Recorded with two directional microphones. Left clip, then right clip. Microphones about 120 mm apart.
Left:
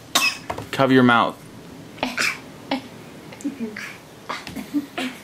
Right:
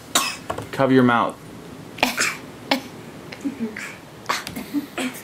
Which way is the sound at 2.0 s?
50° right (ahead or behind).